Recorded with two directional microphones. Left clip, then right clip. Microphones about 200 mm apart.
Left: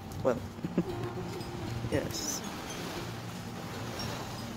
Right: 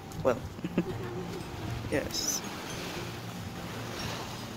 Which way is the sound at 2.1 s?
Centre (ahead or behind).